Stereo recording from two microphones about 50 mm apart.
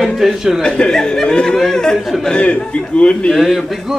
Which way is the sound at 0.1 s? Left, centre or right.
Centre.